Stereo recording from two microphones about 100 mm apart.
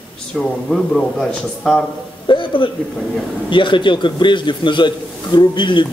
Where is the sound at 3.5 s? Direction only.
55° left (ahead or behind).